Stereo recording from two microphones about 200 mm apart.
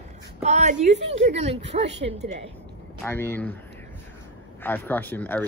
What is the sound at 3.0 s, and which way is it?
Speech, 10° left (ahead or behind).